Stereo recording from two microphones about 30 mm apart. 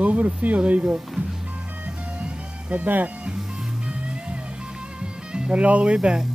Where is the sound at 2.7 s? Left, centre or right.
Right.